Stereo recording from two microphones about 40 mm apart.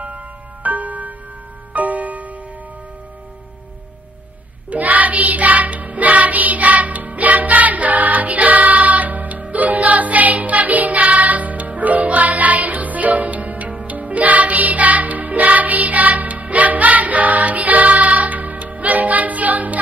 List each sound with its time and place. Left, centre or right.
0.7 s music: right
4.6 s music: right